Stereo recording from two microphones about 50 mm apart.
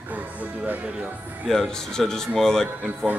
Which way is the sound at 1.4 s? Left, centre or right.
Centre.